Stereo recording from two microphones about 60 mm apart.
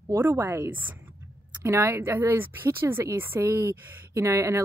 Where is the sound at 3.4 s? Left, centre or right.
Right.